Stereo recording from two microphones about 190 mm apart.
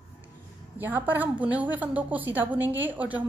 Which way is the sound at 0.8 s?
10° right (ahead or behind).